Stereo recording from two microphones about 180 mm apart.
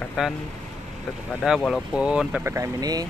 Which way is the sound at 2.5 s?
20° right (ahead or behind).